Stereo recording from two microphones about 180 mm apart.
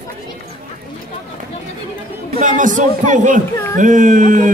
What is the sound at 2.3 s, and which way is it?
A man's voice, 45° right (ahead or behind).